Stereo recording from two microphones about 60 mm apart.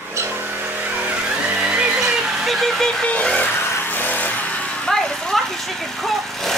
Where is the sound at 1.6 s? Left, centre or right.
Centre.